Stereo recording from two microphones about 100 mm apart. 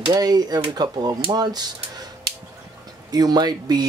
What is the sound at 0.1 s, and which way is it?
Speech, 40° right (ahead or behind).